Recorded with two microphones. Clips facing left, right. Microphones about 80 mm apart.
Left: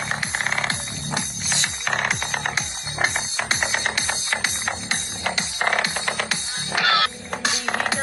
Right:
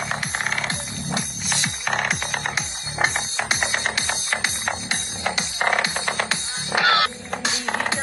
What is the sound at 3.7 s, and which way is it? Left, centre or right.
Music, centre.